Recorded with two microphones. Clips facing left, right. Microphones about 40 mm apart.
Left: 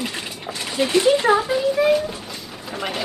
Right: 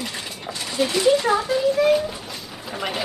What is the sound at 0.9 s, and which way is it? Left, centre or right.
Speech, centre.